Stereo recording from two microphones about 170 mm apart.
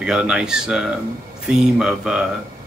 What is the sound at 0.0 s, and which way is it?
Speech, 5° right (ahead or behind).